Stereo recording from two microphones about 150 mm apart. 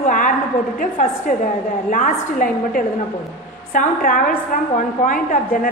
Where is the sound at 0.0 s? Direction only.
60° left (ahead or behind).